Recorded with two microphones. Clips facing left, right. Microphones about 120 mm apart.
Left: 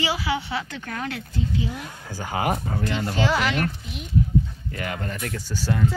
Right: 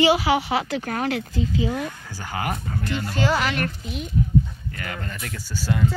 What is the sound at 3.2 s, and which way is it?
Speech, 40° right (ahead or behind).